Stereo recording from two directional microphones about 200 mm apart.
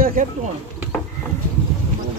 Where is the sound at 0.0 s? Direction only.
45° right (ahead or behind).